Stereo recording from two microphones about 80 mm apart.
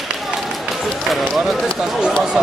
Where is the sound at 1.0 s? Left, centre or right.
Centre.